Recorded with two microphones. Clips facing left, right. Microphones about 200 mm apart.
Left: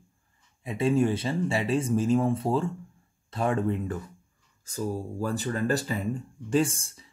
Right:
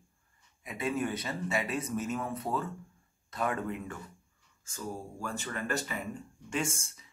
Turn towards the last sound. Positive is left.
turn(degrees=35)  # may be behind; listen again after turning